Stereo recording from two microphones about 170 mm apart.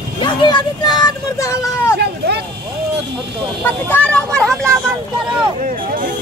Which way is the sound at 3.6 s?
10° left (ahead or behind).